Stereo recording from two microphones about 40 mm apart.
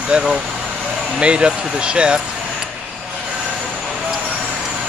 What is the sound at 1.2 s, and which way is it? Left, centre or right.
Speech, right.